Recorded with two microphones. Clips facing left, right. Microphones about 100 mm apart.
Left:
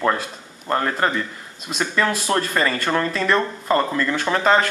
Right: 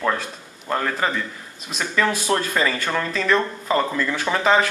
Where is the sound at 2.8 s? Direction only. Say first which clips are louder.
Left 1 dB; 10° left (ahead or behind).